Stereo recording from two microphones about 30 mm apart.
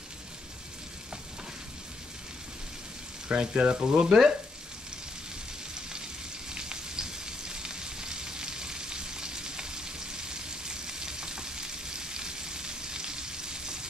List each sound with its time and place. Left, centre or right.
3.3 s speech: right
6.5 s frying: right